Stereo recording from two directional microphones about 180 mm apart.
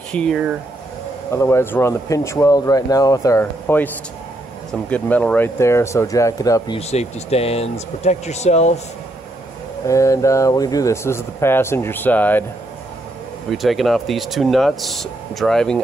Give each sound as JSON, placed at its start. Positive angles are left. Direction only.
{"t": 0.1, "sound": "speech", "side_deg": 5}
{"t": 1.3, "sound": "speech", "side_deg": 15}
{"t": 6.8, "sound": "speech", "side_deg": 35}
{"t": 9.8, "sound": "speech", "side_deg": 15}
{"t": 13.5, "sound": "speech", "side_deg": 0}